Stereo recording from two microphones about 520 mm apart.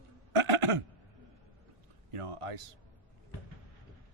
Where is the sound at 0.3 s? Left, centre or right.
Right.